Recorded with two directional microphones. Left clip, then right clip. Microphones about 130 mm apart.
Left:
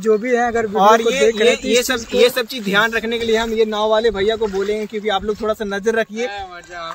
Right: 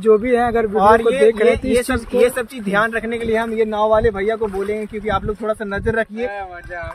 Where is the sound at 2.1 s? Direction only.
5° left (ahead or behind); by 6.3 s 50° left (ahead or behind).